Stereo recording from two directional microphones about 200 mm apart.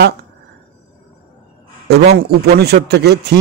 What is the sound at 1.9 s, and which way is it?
A man's voice, 55° right (ahead or behind).